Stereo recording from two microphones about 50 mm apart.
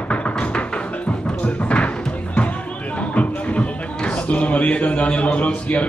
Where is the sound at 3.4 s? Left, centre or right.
Left.